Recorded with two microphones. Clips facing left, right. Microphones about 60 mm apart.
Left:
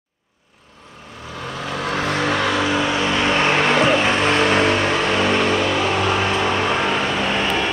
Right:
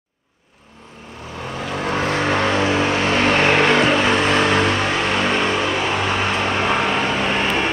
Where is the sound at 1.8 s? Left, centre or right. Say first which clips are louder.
Right 1 dB; right.